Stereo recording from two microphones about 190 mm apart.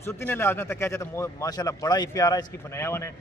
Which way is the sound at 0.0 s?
10° left (ahead or behind).